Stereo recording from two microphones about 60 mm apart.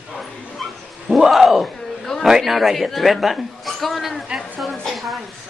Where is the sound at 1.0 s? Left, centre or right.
Centre.